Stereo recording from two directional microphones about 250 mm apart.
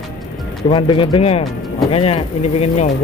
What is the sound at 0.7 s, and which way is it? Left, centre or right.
Speech, centre.